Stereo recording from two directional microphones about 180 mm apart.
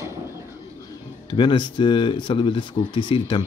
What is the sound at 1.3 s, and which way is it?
Speech, 25° left (ahead or behind).